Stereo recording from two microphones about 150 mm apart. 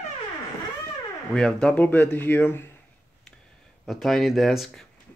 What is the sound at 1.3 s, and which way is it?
Speech, 5° left (ahead or behind).